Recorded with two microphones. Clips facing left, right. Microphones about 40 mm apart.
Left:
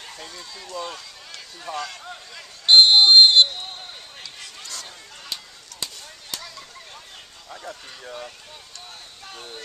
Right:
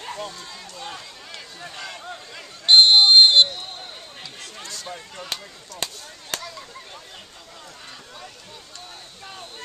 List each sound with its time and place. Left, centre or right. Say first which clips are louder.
0.1 s speech: right 6 dB; right
0.7 s run: left 5 dB; centre
1.8 s speech: right 1 dB; centre
2.6 s speech: even; centre
4.8 s speech: right 6 dB; centre
5.8 s speech: right 3 dB; right
6.3 s a sound: right 5 dB; right